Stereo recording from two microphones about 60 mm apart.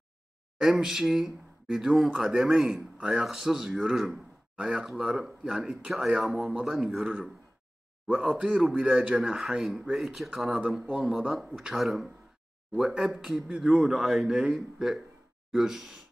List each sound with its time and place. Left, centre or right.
0.6 s speech: centre
8.1 s speech: centre
10.5 s speech: centre
12.7 s speech: centre